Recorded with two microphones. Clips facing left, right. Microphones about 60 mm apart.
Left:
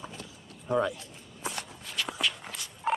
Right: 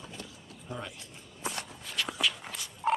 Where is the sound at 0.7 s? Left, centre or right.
Left.